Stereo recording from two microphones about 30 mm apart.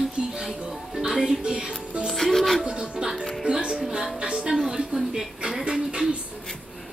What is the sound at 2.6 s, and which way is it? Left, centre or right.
Music, right.